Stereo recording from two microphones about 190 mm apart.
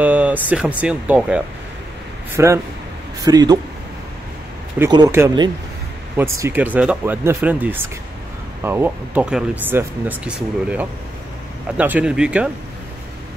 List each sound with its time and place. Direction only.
0.0 s speech: 10° right (ahead or behind)
4.7 s speech: 20° right (ahead or behind)